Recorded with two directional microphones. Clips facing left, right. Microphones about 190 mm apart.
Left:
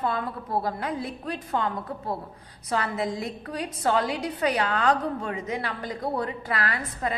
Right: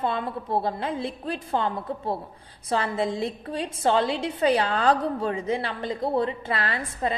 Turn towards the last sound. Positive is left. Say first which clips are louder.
# right 1 dB
turn(degrees=-25)  # may be behind; listen again after turning